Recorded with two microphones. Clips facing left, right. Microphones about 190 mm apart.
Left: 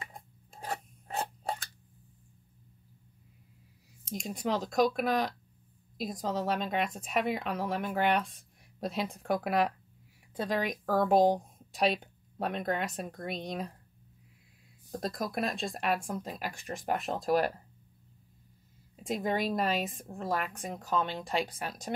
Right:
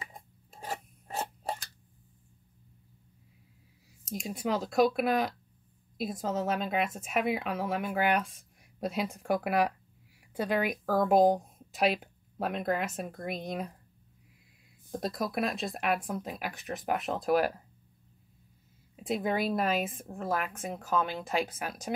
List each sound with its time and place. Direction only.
0.0 s chewing: 5° right (ahead or behind)
4.1 s a woman's voice: centre (ahead or behind)
14.9 s a woman's voice: 5° right (ahead or behind)
19.0 s a woman's voice: 5° right (ahead or behind)